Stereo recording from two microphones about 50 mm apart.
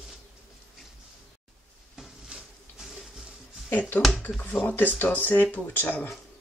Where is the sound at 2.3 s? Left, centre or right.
Centre.